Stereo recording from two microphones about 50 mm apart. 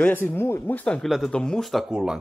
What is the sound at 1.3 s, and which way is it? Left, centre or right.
Speech, centre.